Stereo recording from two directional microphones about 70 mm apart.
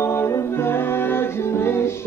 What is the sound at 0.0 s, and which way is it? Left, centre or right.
Music, left.